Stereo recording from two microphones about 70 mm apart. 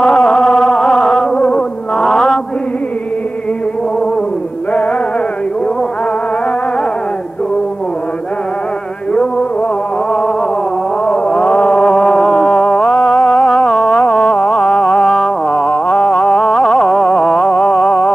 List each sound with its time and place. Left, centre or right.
0.0 s music: centre
1.3 s music: centre
2.0 s mantra: centre
11.1 s chant: centre